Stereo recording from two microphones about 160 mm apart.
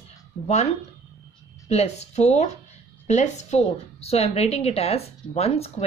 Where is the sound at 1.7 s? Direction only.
40° left (ahead or behind).